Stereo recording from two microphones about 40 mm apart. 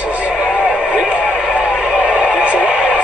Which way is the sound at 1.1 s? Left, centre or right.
Right.